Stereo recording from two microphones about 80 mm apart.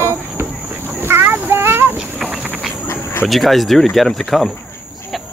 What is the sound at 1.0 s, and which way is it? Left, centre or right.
Child singing, right.